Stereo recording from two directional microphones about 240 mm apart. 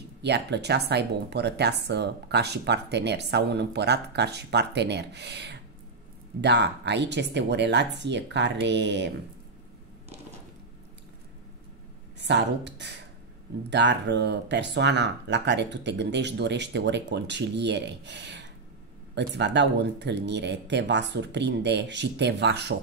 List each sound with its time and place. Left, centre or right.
0.2 s speech: right
12.2 s speech: right